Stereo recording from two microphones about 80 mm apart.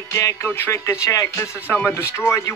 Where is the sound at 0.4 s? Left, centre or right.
Left.